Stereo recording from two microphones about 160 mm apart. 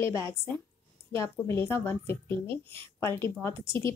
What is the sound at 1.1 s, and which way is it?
A woman's voice, 15° left (ahead or behind).